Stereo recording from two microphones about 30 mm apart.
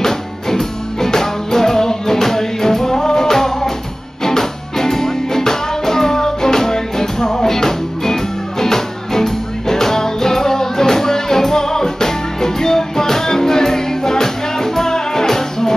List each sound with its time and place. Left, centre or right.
0.0 s music: centre